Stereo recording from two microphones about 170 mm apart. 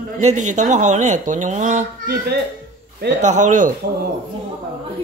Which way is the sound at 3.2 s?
45° right (ahead or behind).